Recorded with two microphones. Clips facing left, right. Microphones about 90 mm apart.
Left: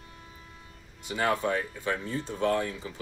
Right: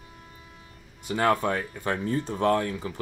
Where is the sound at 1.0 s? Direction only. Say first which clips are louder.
Right 4 dB; 50° right (ahead or behind).